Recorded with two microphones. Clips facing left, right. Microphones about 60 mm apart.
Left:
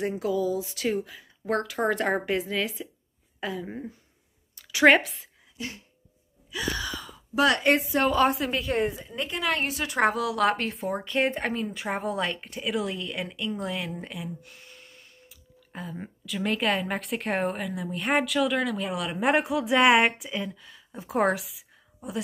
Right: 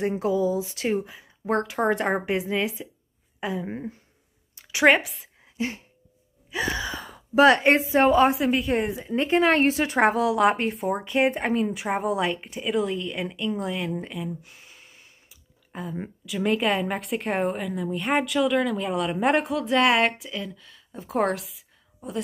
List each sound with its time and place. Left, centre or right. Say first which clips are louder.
0.2 s speech: right 3 dB; right
4.6 s a sound: right 1 dB; right
4.8 s speech: even; centre
5.6 s a sound: right 8 dB; right
6.5 s gasp: right 3 dB; right
7.3 s speech: right 5 dB; right; by 8.9 s centre
9.1 s speech: right 8 dB; right; by 10.7 s centre
10.7 s speech: right 4 dB; centre
11.7 s a woman's voice: right 4 dB; centre
14.0 s a sound: right 4 dB; centre
16.3 s a woman's voice: right 3 dB; centre